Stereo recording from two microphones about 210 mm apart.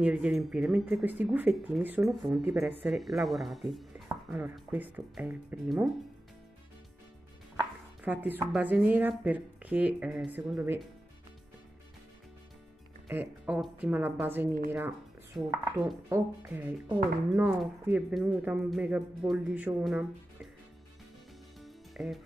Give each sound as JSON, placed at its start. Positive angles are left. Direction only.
{"t": 0.0, "sound": "a woman's voice", "side_deg": -5}
{"t": 8.0, "sound": "a woman's voice", "side_deg": -10}
{"t": 13.1, "sound": "a woman's voice", "side_deg": -5}
{"t": 21.5, "sound": "music", "side_deg": 0}